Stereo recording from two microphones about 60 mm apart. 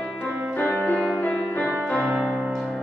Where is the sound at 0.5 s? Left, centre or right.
Left.